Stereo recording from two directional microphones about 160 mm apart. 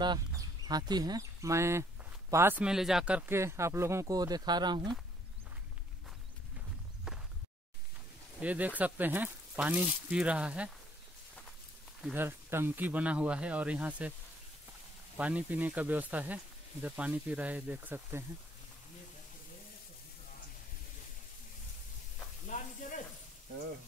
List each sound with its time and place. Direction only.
0.0 s speech: 25° right (ahead or behind)
7.1 s a sound: 5° right (ahead or behind)
8.4 s speech: 10° right (ahead or behind)
12.0 s speech: 10° right (ahead or behind)
15.1 s speech: 10° right (ahead or behind)
22.5 s sizzle: 50° left (ahead or behind)